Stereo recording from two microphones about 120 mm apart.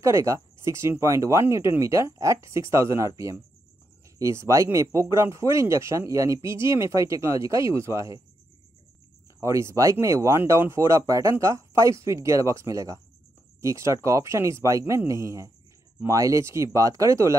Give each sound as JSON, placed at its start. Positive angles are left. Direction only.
{"t": 0.0, "sound": "speech", "side_deg": -25}
{"t": 4.2, "sound": "speech", "side_deg": -25}
{"t": 9.4, "sound": "speech", "side_deg": -25}